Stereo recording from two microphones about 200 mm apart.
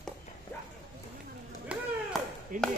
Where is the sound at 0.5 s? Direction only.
10° left (ahead or behind).